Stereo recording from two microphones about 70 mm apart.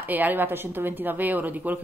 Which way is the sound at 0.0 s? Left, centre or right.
Right.